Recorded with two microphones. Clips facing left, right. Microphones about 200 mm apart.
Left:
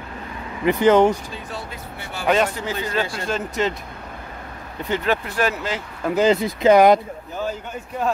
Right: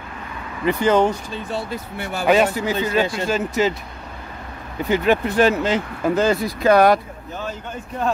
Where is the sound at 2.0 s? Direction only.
45° right (ahead or behind).